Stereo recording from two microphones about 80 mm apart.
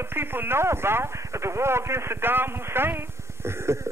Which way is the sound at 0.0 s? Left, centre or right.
Right.